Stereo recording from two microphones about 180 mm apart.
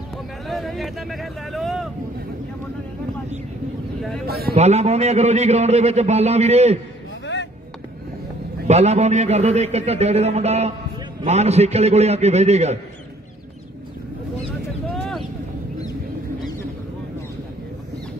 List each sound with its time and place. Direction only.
0.5 s speech: centre (ahead or behind)
4.3 s a man's voice: 60° right (ahead or behind)
4.6 s a man's voice: 35° right (ahead or behind)
8.6 s a man's voice: 35° right (ahead or behind)